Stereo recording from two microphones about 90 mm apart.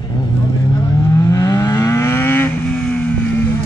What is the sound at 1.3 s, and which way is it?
Vehicle, 40° left (ahead or behind).